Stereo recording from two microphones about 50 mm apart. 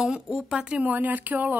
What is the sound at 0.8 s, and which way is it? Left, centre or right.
Speech, right.